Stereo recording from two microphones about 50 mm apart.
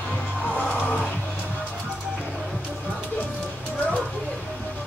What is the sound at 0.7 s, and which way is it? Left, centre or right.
Music, left.